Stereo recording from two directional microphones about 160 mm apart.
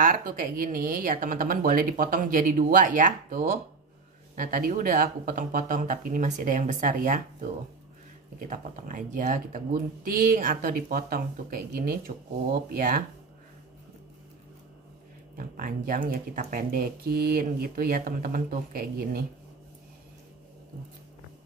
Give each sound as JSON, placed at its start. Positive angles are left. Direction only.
{"t": 0.0, "sound": "speech", "side_deg": -60}
{"t": 15.3, "sound": "speech", "side_deg": -60}